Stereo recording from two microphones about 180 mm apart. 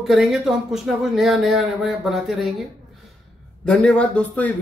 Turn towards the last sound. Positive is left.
turn(degrees=5)  # may be behind; listen again after turning